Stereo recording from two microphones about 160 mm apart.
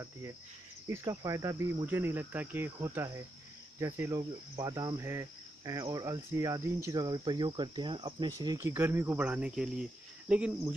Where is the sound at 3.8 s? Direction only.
20° right (ahead or behind).